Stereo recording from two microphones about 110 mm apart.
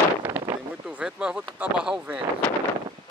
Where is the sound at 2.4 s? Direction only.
10° left (ahead or behind).